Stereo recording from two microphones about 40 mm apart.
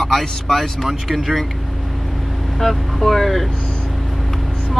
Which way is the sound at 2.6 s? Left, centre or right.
Centre.